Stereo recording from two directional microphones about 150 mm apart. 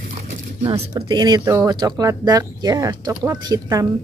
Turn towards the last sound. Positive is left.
turn(degrees=-20)  # may be behind; listen again after turning